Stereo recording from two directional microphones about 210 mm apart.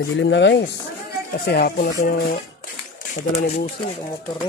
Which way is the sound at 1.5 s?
45° left (ahead or behind).